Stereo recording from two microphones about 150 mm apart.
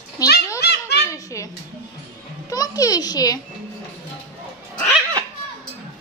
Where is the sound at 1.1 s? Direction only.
20° left (ahead or behind).